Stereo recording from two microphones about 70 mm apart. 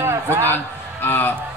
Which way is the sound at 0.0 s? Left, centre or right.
Right.